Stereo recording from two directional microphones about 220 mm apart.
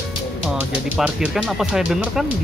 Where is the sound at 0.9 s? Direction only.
Centre (ahead or behind).